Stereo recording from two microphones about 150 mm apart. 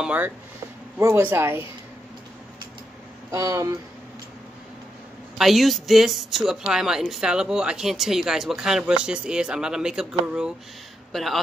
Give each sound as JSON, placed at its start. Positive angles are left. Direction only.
{"t": 0.0, "sound": "speech", "side_deg": -10}
{"t": 3.3, "sound": "speech", "side_deg": -20}
{"t": 5.4, "sound": "a man's voice", "side_deg": 0}